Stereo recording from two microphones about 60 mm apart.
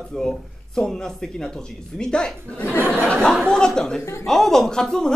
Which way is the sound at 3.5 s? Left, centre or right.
Centre.